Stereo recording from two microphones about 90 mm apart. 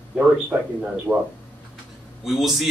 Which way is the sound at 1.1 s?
20° right (ahead or behind).